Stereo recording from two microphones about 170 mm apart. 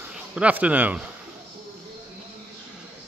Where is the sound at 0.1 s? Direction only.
5° right (ahead or behind).